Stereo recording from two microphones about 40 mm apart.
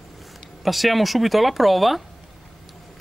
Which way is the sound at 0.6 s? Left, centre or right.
Centre.